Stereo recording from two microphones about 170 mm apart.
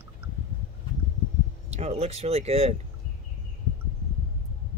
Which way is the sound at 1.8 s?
40° right (ahead or behind).